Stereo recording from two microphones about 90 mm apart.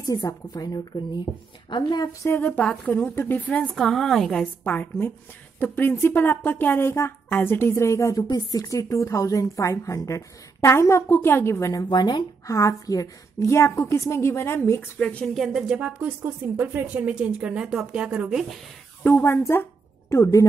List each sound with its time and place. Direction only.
0.0 s a woman's voice: 40° left (ahead or behind)
2.2 s speech: 20° left (ahead or behind)
2.6 s speech: 10° left (ahead or behind)
4.6 s a woman's voice: 20° left (ahead or behind)
11.7 s a woman's voice: 50° left (ahead or behind)
12.4 s a woman's voice: 35° left (ahead or behind)
15.0 s speech: 15° left (ahead or behind)
15.2 s speech: centre (ahead or behind)
19.0 s a woman's voice: 25° left (ahead or behind)